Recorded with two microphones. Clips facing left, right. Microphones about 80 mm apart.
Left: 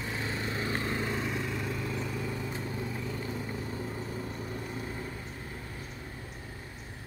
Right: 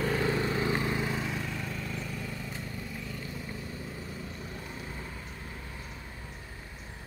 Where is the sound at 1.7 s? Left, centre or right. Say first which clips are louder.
Left 3 dB; left.